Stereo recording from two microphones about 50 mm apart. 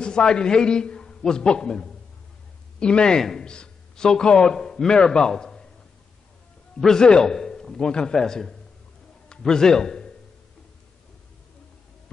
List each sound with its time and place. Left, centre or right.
0.0 s a man's voice: centre
6.8 s a man's voice: centre